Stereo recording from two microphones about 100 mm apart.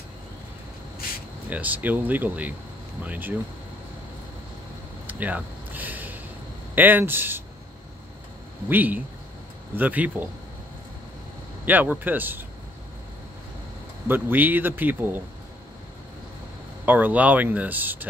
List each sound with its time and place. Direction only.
1.5 s speech: 15° right (ahead or behind)
5.0 s a sound: 15° right (ahead or behind)
6.7 s speech: 20° right (ahead or behind)
8.6 s speech: 20° right (ahead or behind)
11.6 s speech: 15° right (ahead or behind)
14.0 s speech: 20° right (ahead or behind)
16.8 s speech: 15° right (ahead or behind)